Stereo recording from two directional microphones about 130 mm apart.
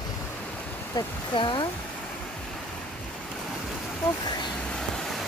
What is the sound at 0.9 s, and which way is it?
Speech, 40° left (ahead or behind).